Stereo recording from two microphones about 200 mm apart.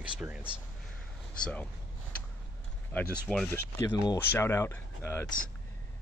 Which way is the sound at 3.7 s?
15° left (ahead or behind).